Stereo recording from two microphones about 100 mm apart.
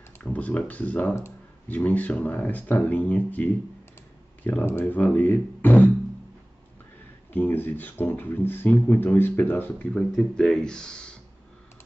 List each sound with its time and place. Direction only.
0.2 s speech: 15° left (ahead or behind)
7.3 s speech: 20° left (ahead or behind)
10.1 s speech: 5° left (ahead or behind)